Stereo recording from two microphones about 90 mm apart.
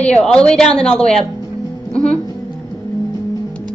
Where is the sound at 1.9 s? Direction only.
10° left (ahead or behind).